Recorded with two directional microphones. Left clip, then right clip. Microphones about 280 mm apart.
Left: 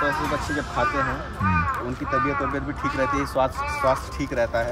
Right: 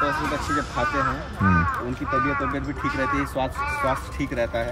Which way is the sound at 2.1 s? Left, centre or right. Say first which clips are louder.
Even; centre.